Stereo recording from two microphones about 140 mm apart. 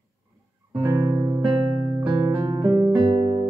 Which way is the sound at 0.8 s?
25° right (ahead or behind).